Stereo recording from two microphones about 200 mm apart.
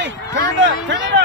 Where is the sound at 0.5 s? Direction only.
65° right (ahead or behind).